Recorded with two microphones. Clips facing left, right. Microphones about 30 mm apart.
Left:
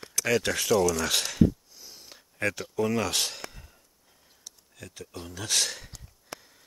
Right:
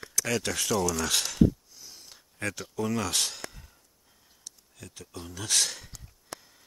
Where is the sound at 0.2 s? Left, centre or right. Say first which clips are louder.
Left 4 dB; centre.